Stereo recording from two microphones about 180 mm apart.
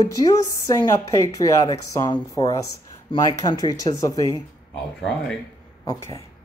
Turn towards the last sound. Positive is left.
turn(degrees=15)  # may be behind; listen again after turning